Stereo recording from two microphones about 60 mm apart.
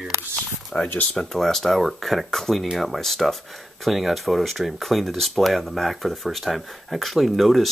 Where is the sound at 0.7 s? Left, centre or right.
Left.